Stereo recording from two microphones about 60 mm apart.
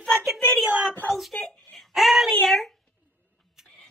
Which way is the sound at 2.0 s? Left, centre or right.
Centre.